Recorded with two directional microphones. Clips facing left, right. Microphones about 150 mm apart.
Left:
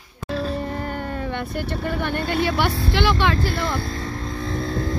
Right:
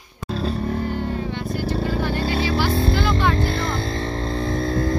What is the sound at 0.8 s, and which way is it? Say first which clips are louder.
Speech: right 2 dB; 55° left (ahead or behind).